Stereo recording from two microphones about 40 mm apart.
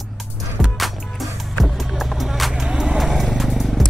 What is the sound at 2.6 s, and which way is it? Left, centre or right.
Vehicle, right.